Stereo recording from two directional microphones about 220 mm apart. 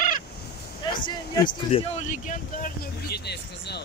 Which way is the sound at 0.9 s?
20° left (ahead or behind).